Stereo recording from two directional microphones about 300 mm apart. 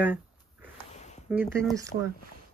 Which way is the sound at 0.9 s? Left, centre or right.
Left.